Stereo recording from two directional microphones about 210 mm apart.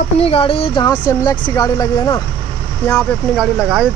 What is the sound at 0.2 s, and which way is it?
Speech, 25° left (ahead or behind).